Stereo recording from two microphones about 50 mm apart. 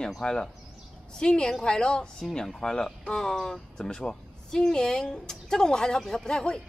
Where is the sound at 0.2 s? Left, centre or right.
Centre.